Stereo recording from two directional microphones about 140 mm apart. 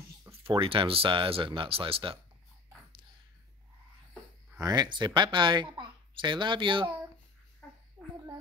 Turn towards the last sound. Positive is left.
turn(degrees=10)  # may be behind; listen again after turning